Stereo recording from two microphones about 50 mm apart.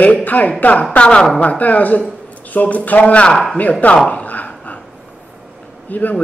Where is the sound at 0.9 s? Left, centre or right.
Centre.